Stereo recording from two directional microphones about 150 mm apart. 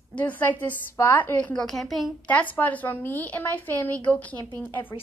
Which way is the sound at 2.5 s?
10° left (ahead or behind).